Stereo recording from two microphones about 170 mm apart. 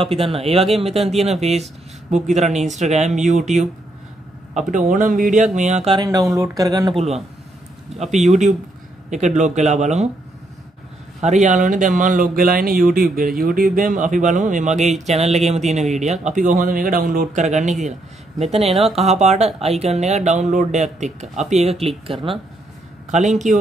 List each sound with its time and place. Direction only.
0.0 s speech: 35° right (ahead or behind)
6.3 s speech: 20° right (ahead or behind)
7.0 s speech: 35° right (ahead or behind)
11.1 s speech: 45° right (ahead or behind)
23.1 s speech: 45° right (ahead or behind)